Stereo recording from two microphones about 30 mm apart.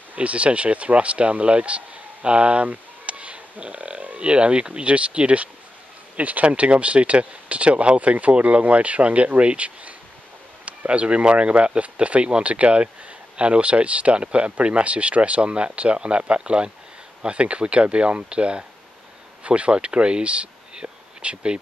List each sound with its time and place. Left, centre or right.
0.1 s speech: right
3.1 s a sound: right
4.2 s speech: right
6.1 s speech: right
6.4 s speech: right